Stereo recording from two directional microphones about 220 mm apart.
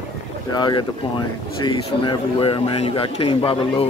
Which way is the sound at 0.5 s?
20° left (ahead or behind).